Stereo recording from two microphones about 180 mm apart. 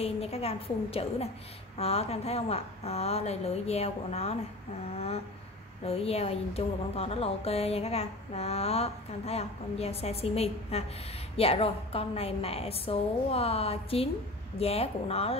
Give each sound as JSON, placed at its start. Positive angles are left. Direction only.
{"t": 0.0, "sound": "a woman's voice", "side_deg": 35}